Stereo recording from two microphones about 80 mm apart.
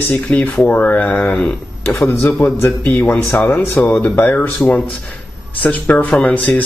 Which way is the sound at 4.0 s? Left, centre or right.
Left.